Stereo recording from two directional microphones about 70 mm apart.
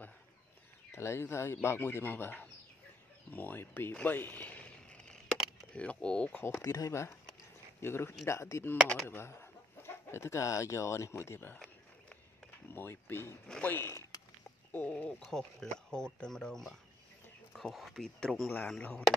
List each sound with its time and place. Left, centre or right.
0.9 s speech: left
3.9 s a sound: left
5.8 s speech: centre
6.6 s speech: left
12.7 s speech: left; by 18.4 s centre
18.7 s speech: centre